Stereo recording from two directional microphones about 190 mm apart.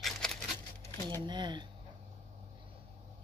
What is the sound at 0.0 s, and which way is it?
Patter, 5° left (ahead or behind).